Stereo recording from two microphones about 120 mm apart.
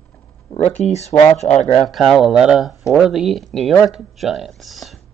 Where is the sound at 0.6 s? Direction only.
65° left (ahead or behind).